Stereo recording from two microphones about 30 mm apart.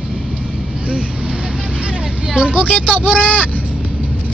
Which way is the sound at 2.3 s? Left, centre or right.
Right.